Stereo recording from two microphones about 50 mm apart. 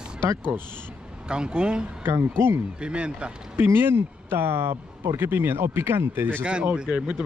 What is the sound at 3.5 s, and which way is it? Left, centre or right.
Speech, right.